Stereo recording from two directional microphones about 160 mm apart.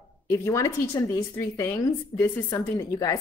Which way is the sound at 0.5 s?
15° left (ahead or behind).